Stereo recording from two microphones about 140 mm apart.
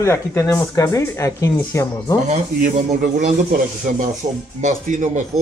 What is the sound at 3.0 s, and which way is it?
Speech, 70° right (ahead or behind).